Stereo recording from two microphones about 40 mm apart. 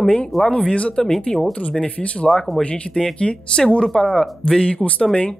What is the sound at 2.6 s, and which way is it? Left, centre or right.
Speech, left.